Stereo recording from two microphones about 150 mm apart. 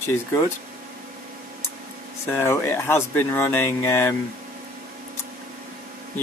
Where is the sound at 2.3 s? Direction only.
15° left (ahead or behind).